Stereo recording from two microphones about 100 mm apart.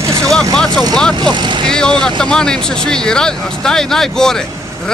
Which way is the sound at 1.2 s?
50° right (ahead or behind).